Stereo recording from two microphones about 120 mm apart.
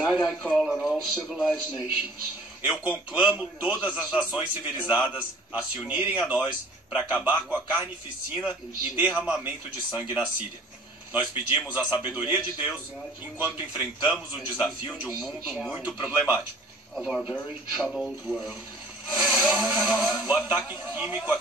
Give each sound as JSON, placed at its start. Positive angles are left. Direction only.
{"t": 0.0, "sound": "a man's voice", "side_deg": -5}
{"t": 2.6, "sound": "a man's voice", "side_deg": -10}
{"t": 11.7, "sound": "a man's voice", "side_deg": -15}
{"t": 16.9, "sound": "a man's voice", "side_deg": 0}